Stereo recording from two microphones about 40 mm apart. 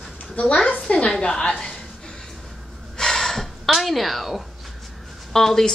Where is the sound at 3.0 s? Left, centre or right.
Centre.